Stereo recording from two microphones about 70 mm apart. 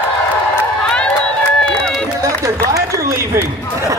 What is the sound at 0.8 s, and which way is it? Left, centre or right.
Run, centre.